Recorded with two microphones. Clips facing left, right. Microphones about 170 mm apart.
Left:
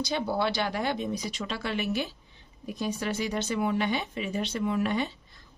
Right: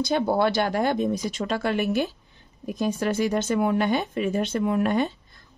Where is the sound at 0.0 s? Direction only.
50° right (ahead or behind).